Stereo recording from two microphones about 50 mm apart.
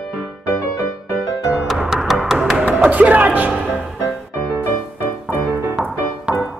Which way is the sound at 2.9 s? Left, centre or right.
Right.